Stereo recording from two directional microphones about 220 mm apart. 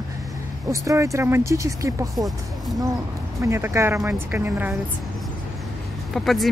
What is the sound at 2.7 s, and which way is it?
Speech, 15° right (ahead or behind).